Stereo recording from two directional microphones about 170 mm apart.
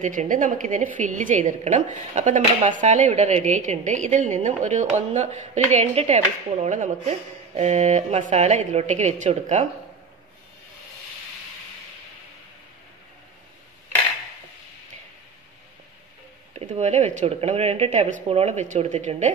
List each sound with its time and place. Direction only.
0.0 s a woman's voice: 50° right (ahead or behind)
16.5 s speech: 40° right (ahead or behind)